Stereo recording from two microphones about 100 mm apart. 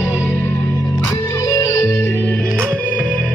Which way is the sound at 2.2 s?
10° left (ahead or behind).